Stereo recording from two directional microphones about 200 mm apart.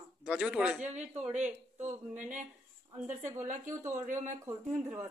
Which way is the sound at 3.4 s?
40° right (ahead or behind).